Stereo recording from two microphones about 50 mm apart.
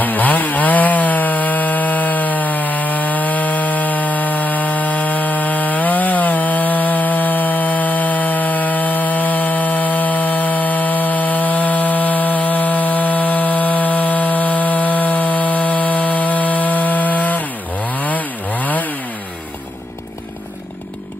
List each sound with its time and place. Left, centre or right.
0.0 s wood: left
17.9 s chainsaw: left